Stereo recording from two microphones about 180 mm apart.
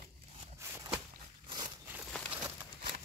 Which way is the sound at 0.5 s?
15° right (ahead or behind).